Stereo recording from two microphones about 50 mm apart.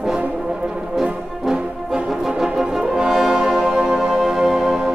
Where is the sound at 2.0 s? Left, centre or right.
Centre.